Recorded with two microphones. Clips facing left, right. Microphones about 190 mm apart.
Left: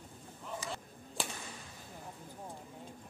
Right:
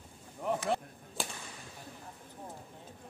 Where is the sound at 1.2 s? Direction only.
Centre (ahead or behind).